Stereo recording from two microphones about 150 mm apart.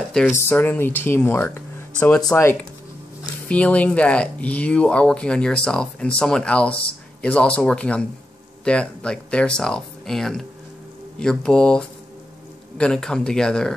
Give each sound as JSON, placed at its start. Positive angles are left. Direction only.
{"t": 0.2, "sound": "speech", "side_deg": 5}